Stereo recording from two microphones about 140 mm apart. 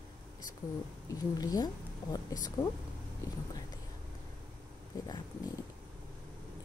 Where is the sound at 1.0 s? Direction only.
25° left (ahead or behind).